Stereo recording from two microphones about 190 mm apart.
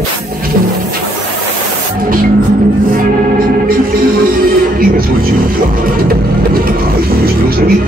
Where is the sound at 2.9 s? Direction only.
50° right (ahead or behind).